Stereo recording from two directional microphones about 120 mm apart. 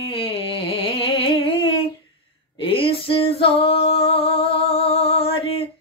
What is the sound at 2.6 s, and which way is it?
Female singing, 50° left (ahead or behind).